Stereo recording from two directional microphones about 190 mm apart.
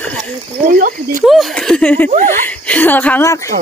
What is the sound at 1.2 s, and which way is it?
Speech, centre (ahead or behind).